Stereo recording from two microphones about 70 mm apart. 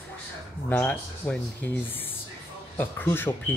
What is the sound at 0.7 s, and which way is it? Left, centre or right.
Speech, left.